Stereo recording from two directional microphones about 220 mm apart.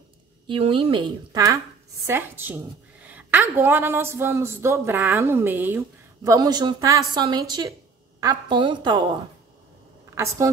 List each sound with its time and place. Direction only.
0.5 s a woman's voice: 25° right (ahead or behind)